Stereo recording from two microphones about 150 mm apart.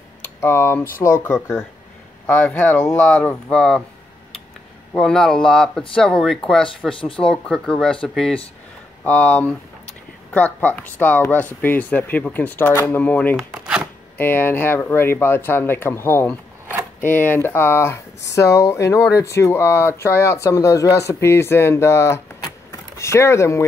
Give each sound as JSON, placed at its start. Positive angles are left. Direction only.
{"t": 0.2, "sound": "speech", "side_deg": 15}
{"t": 0.8, "sound": "speech", "side_deg": 65}
{"t": 2.2, "sound": "speech", "side_deg": 10}
{"t": 4.9, "sound": "speech", "side_deg": 5}
{"t": 7.0, "sound": "speech", "side_deg": 35}
{"t": 7.2, "sound": "speech", "side_deg": 5}
{"t": 13.4, "sound": "a sound", "side_deg": -5}
{"t": 14.1, "sound": "speech", "side_deg": 15}
{"t": 22.7, "sound": "a sound", "side_deg": 20}